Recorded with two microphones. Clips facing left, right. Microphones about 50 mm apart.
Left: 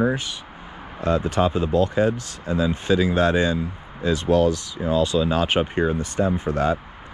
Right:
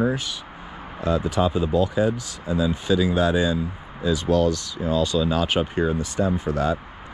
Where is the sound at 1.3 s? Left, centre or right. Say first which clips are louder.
Left 1 dB; left.